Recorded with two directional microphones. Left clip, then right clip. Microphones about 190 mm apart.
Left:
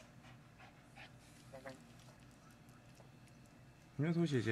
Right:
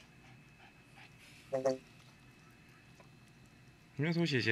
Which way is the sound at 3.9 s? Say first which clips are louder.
Right 4 dB; 5° right (ahead or behind).